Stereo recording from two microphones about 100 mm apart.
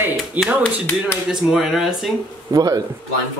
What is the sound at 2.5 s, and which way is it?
Speech, 40° right (ahead or behind).